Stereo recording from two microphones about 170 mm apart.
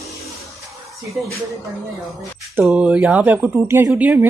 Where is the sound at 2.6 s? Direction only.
5° right (ahead or behind).